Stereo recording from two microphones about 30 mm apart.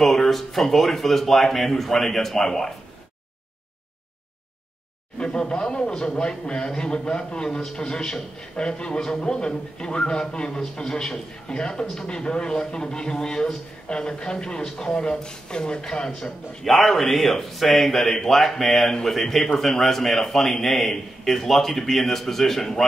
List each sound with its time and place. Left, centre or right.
0.0 s speech: centre
5.2 s a man's voice: left
11.8 s speech: centre
12.1 s a man's voice: left
16.6 s speech: centre